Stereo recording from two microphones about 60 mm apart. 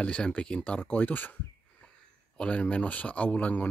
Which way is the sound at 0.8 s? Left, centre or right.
Left.